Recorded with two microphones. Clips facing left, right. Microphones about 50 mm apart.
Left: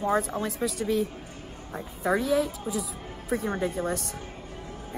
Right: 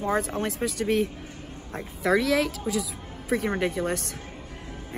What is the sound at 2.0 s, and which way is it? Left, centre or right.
Speech, right.